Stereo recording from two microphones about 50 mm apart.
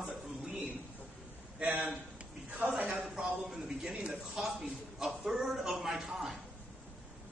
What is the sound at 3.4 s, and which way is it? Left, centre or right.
A man's voice, centre.